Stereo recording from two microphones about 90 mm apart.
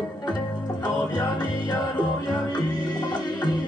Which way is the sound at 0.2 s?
50° left (ahead or behind).